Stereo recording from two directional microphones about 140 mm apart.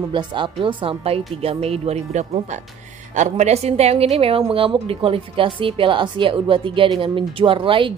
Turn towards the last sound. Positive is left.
turn(degrees=-35)  # may be behind; listen again after turning